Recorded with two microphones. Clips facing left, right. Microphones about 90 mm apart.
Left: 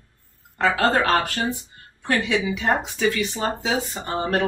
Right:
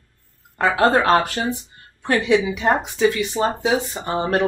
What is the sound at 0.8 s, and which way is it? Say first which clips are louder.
Speech: right 5 dB; 20° right (ahead or behind).